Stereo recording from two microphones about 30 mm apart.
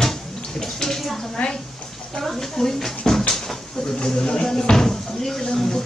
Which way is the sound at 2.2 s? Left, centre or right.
Centre.